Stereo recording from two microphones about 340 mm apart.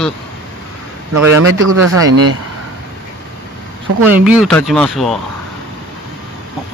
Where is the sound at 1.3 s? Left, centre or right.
Right.